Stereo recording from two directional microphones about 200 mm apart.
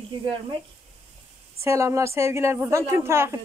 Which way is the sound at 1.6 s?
15° right (ahead or behind).